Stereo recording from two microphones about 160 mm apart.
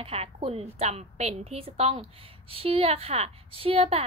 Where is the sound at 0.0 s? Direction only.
40° right (ahead or behind).